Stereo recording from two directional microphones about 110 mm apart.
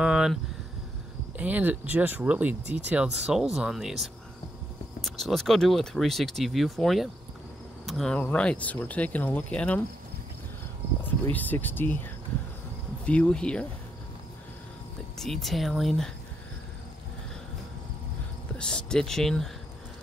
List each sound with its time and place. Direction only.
0.0 s a sound: 5° right (ahead or behind)
1.4 s speech: 15° right (ahead or behind); by 9.8 s 10° left (ahead or behind)
11.2 s speech: 15° left (ahead or behind)
15.1 s speech: centre (ahead or behind)
18.6 s speech: 10° left (ahead or behind)